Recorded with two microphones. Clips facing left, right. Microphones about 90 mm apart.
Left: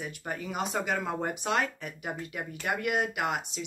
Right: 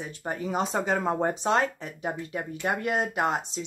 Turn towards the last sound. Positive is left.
turn(degrees=-30)  # may be behind; listen again after turning